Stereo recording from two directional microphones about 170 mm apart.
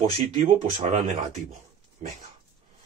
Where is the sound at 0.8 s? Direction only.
45° right (ahead or behind).